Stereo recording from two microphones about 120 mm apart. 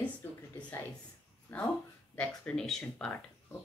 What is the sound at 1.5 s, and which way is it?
A woman's voice, 15° left (ahead or behind).